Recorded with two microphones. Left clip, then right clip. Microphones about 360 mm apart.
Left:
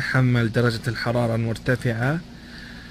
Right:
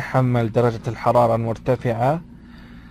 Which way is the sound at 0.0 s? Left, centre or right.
Centre.